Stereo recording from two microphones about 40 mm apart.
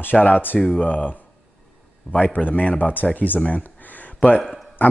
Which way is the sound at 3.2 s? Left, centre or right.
Left.